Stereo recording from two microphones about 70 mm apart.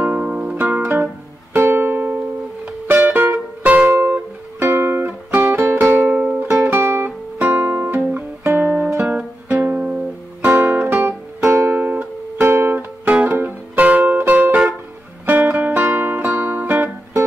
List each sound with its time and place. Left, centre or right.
0.0 s music: centre
4.6 s music: right
6.0 s music: centre
6.4 s music: right
8.5 s guitar: right
9.1 s music: right
11.8 s music: right
12.4 s music: right